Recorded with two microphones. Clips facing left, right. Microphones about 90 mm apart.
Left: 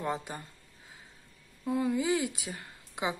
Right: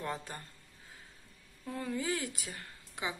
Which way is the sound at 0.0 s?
15° left (ahead or behind).